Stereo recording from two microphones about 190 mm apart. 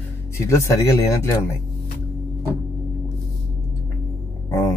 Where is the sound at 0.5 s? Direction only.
15° left (ahead or behind).